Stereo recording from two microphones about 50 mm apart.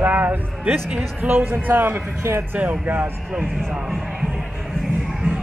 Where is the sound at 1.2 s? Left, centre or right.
Right.